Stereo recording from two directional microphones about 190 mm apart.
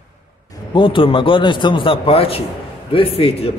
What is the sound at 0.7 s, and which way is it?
A man's voice, 25° left (ahead or behind).